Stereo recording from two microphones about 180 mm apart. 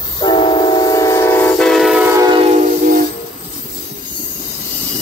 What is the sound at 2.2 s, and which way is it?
Train, 30° right (ahead or behind).